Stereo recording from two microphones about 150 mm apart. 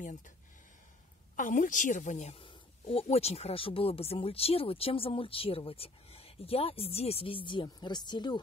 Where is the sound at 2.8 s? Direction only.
40° left (ahead or behind).